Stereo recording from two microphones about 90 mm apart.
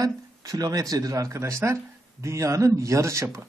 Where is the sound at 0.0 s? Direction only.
40° right (ahead or behind).